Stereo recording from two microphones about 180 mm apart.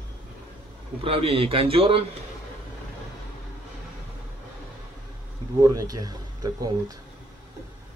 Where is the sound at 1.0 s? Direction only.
30° right (ahead or behind).